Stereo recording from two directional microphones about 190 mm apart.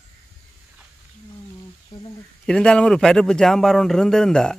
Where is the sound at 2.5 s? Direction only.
5° left (ahead or behind).